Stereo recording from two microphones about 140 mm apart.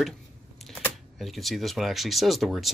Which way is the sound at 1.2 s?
Centre (ahead or behind).